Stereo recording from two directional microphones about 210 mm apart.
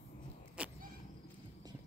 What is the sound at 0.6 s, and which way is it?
Vehicle, 5° right (ahead or behind).